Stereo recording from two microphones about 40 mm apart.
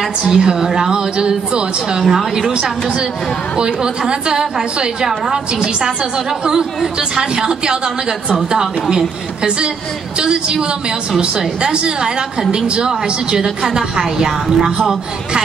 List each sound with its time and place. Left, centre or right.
0.3 s a woman's voice: centre
2.5 s a woman's voice: right
7.0 s a woman's voice: right
8.9 s a woman's voice: right